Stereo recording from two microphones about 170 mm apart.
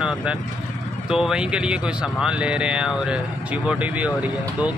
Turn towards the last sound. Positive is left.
turn(degrees=-5)  # may be behind; listen again after turning